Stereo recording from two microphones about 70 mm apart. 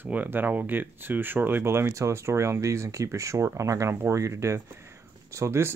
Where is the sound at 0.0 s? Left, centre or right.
Right.